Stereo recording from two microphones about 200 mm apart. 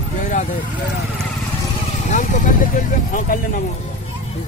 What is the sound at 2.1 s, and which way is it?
Speech, 40° left (ahead or behind).